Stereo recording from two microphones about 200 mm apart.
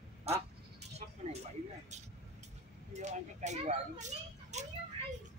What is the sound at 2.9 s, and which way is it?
Speech, 35° right (ahead or behind).